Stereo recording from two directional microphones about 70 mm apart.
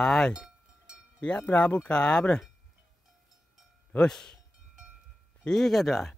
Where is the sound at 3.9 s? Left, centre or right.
Centre.